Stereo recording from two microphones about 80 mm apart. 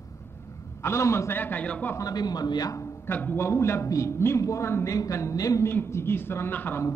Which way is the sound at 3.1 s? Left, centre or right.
Left.